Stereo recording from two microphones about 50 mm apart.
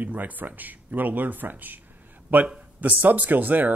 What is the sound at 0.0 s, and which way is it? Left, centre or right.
Speech, right.